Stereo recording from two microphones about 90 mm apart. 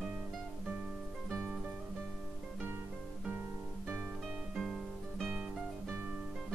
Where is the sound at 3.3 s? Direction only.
15° right (ahead or behind).